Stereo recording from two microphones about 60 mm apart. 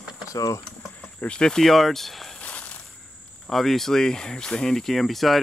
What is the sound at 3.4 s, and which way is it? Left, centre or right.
Speech, centre.